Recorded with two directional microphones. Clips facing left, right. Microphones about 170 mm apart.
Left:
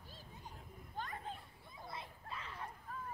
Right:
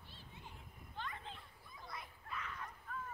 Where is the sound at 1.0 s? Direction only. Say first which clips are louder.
Left 3 dB; 45° left (ahead or behind).